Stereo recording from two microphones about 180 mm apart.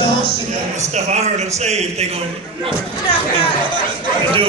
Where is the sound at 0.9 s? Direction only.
40° right (ahead or behind).